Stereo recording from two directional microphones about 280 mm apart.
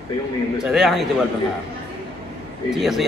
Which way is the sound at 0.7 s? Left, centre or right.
Centre.